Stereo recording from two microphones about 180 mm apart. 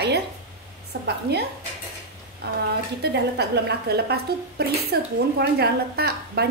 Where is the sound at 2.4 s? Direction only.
60° right (ahead or behind).